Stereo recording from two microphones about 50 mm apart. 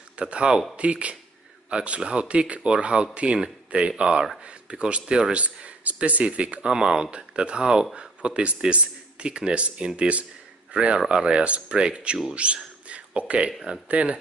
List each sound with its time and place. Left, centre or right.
0.2 s speech: centre
6.7 s speech: centre
12.8 s a sound: right
13.8 s speech: right